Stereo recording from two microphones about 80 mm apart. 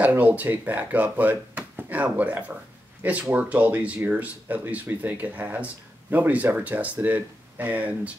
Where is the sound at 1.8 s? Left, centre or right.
Right.